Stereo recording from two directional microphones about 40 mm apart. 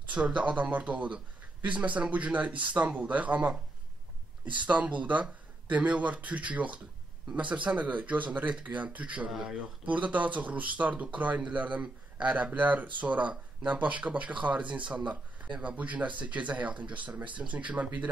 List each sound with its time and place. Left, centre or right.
0.1 s speech: right
4.6 s speech: right
9.3 s speech: centre
9.8 s speech: right
11.8 s a man's voice: right
12.4 s speech: right